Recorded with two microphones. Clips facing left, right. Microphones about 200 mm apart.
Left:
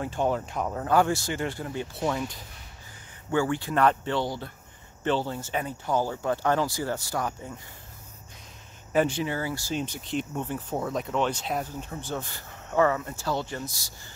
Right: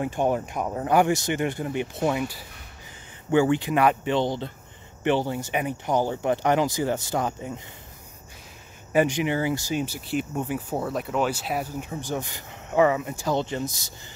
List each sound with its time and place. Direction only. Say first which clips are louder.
0.0 s speech: right 3 dB; 15° right (ahead or behind)
3.3 s speech: right 6 dB; 20° right (ahead or behind)
8.9 s speech: right 3 dB; 15° right (ahead or behind)
9.8 s speech: right 3 dB; 10° right (ahead or behind)